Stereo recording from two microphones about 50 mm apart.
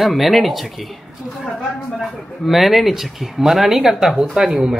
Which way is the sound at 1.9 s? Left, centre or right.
Centre.